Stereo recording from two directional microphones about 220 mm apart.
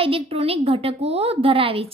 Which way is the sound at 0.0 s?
25° right (ahead or behind).